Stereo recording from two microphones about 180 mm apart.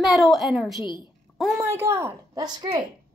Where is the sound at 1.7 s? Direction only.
15° right (ahead or behind).